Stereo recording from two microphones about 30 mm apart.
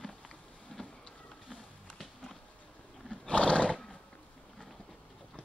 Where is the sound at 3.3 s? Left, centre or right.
Left.